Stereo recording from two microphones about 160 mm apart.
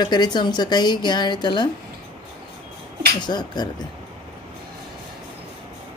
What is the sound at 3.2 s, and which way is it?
Speech, 25° left (ahead or behind).